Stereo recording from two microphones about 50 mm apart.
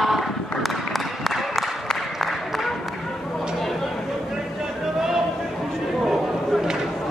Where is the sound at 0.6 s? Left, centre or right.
Centre.